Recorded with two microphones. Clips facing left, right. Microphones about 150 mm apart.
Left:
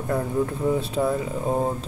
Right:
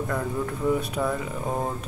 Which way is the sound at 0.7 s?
25° left (ahead or behind).